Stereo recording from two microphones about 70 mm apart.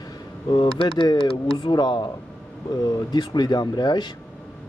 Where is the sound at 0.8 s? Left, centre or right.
Left.